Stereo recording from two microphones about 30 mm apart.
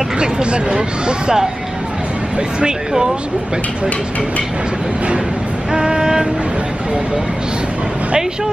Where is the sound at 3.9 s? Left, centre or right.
Left.